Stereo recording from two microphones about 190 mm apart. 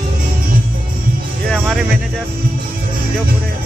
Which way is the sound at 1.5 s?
Centre (ahead or behind).